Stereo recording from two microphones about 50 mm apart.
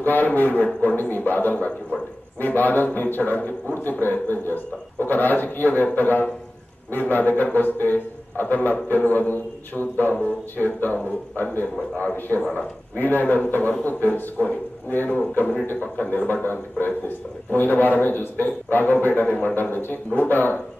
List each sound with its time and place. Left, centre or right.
0.0 s a man's voice: left
12.3 s speech: centre
12.9 s a man's voice: left